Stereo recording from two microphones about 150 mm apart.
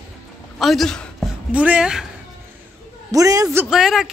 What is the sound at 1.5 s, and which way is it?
Speech, 10° right (ahead or behind).